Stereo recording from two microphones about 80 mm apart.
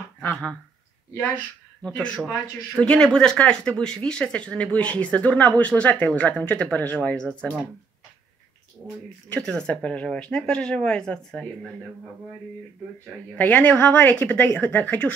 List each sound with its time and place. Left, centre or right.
1.8 s speech: centre
9.3 s speech: centre
13.4 s a woman's voice: centre